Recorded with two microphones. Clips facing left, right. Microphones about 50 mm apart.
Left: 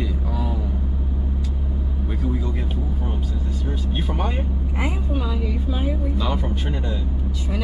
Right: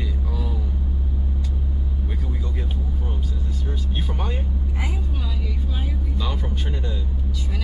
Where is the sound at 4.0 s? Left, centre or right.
Centre.